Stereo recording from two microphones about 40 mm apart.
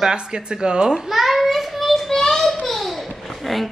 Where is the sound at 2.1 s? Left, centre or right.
Centre.